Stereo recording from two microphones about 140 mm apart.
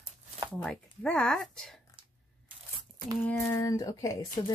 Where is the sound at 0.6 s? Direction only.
5° left (ahead or behind).